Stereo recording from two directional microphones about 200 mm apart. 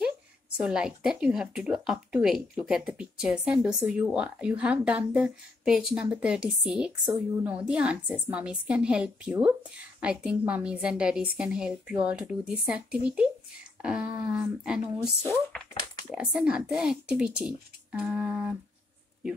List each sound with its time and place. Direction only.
0.6 s speech: 5° right (ahead or behind)
15.0 s speech: 5° left (ahead or behind)
16.1 s speech: 5° right (ahead or behind)
17.9 s a sound: 5° right (ahead or behind)